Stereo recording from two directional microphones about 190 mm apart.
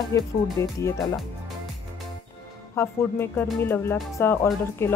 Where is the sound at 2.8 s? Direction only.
10° left (ahead or behind).